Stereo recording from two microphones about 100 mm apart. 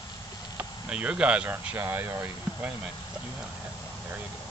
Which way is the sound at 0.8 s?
10° right (ahead or behind).